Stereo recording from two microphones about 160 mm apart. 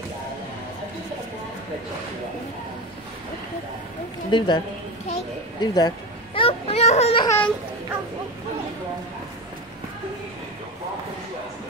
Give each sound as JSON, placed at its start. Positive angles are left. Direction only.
{"t": 4.3, "sound": "a woman's voice", "side_deg": 30}
{"t": 5.6, "sound": "baby cry", "side_deg": 25}
{"t": 7.2, "sound": "speech", "side_deg": 10}